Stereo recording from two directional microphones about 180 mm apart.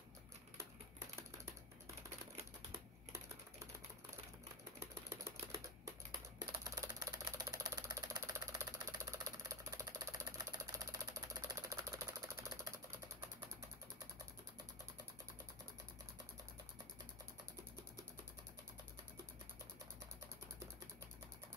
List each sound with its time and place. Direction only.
4.7 s typewriter: 15° right (ahead or behind)
6.4 s ratchet: 15° right (ahead or behind)